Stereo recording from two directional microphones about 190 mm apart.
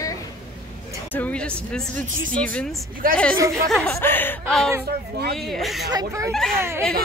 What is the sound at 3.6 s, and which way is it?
A woman's voice, centre (ahead or behind).